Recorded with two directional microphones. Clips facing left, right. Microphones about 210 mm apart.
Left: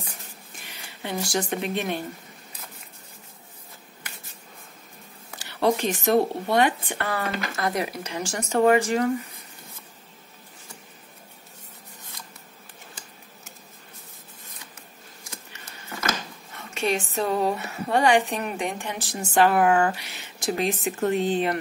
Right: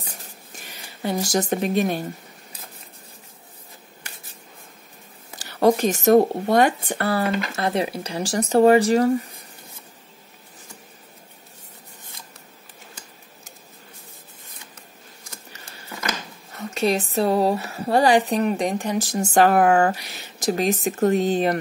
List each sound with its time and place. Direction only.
0.7 s speech: 40° right (ahead or behind)
5.4 s speech: 40° right (ahead or behind)
16.5 s speech: 40° right (ahead or behind)